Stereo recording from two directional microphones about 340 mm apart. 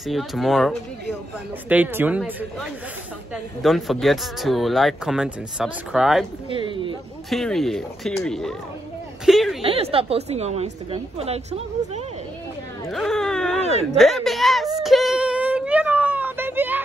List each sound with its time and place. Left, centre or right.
0.0 s speech: centre
6.5 s speech: centre
7.2 s speech: centre
9.6 s speech: centre
12.8 s speech: centre
14.8 s a sound: centre